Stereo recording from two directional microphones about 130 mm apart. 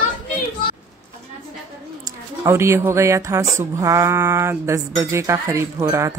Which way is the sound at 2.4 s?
20° right (ahead or behind).